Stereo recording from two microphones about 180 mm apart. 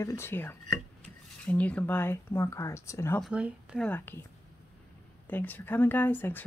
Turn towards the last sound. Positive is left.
turn(degrees=10)  # may be behind; listen again after turning